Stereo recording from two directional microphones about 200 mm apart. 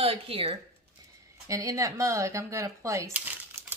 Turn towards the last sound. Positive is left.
turn(degrees=-10)  # may be behind; listen again after turning